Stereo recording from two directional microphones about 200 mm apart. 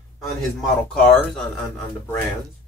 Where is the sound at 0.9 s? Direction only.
5° left (ahead or behind).